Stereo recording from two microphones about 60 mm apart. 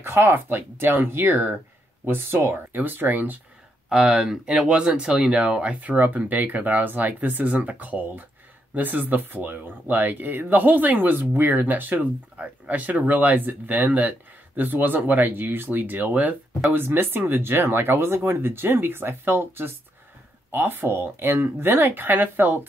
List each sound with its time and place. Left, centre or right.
0.0 s speech: right
3.9 s speech: centre